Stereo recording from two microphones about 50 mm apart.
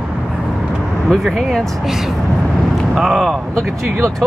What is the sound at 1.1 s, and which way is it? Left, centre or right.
Speech, centre.